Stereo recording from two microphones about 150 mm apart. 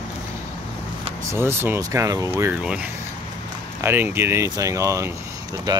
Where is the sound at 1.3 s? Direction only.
15° right (ahead or behind).